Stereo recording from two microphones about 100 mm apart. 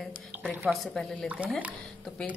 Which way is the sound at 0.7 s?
10° left (ahead or behind).